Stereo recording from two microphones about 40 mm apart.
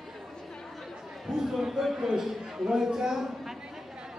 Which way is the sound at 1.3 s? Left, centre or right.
Centre.